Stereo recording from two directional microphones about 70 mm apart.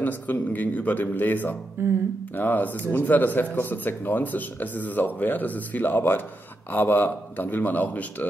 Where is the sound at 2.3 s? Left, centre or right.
Left.